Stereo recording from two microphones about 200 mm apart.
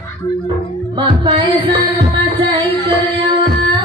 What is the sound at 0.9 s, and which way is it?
Music, 25° right (ahead or behind).